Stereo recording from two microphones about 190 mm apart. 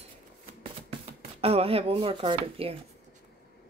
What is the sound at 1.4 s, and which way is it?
Speech, 30° right (ahead or behind).